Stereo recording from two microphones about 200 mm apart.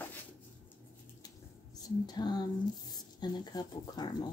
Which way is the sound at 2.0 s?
20° left (ahead or behind).